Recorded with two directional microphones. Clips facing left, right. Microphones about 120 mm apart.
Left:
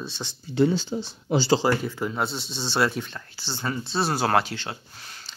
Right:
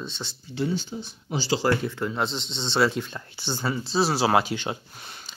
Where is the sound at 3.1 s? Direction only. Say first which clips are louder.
Right 4 dB; 20° right (ahead or behind).